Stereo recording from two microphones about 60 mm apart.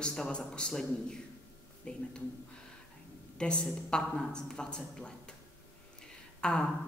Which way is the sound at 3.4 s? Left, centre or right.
Centre.